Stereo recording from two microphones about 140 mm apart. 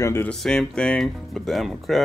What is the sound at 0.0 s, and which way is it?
Speech, 15° left (ahead or behind).